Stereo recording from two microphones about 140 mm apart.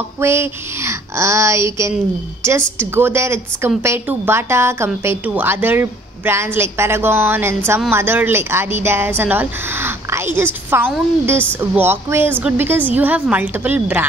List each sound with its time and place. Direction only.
0.2 s a woman's voice: 20° right (ahead or behind)